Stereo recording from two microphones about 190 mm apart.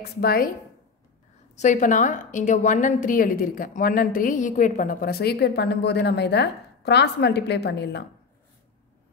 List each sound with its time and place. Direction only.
0.0 s a woman's voice: 55° left (ahead or behind)
1.5 s a woman's voice: 40° left (ahead or behind); by 8.0 s 60° left (ahead or behind)